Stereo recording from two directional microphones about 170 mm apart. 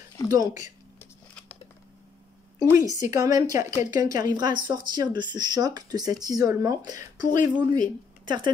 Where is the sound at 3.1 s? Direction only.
20° right (ahead or behind).